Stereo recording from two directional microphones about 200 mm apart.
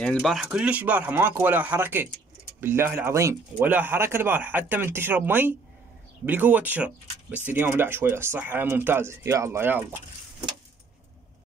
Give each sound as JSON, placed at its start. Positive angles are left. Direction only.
{"t": 0.0, "sound": "speech", "side_deg": 5}